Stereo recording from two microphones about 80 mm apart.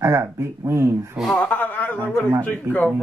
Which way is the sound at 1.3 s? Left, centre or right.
Centre.